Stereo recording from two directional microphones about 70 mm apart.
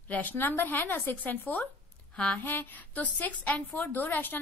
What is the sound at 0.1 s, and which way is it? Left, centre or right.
A woman's voice, left.